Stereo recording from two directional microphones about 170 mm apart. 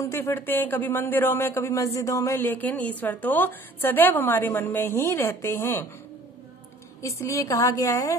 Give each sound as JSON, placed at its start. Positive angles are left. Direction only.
{"t": 0.0, "sound": "speech", "side_deg": 15}
{"t": 7.0, "sound": "speech", "side_deg": 15}